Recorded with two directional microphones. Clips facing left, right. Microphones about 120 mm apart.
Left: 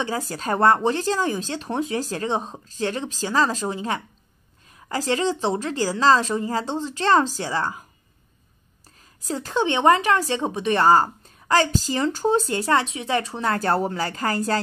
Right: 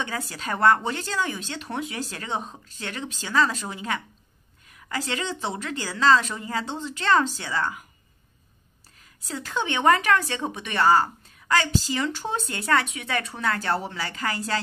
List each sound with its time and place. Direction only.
0.2 s speech: 40° left (ahead or behind)
9.2 s speech: 40° left (ahead or behind)
13.6 s speech: 45° left (ahead or behind)